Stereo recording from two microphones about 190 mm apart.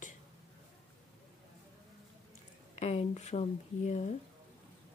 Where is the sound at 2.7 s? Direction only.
30° left (ahead or behind).